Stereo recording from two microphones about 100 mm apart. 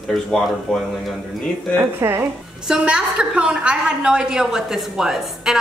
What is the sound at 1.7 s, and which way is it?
Speech, 25° right (ahead or behind).